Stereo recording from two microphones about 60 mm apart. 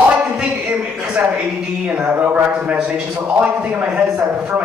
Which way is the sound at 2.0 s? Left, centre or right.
Right.